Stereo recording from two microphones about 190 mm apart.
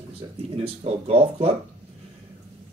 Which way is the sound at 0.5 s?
30° right (ahead or behind).